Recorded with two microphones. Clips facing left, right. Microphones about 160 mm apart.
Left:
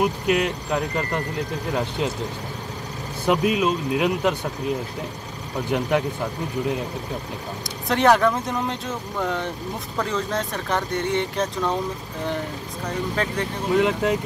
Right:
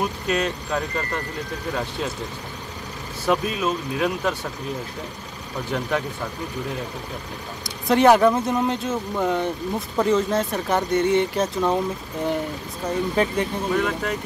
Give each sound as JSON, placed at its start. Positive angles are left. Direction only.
{"t": 0.0, "sound": "speech", "side_deg": 15}
{"t": 3.3, "sound": "speech", "side_deg": 15}
{"t": 5.7, "sound": "speech", "side_deg": 15}
{"t": 7.6, "sound": "speech", "side_deg": -5}
{"t": 12.8, "sound": "speech", "side_deg": -10}
{"t": 13.7, "sound": "speech", "side_deg": 20}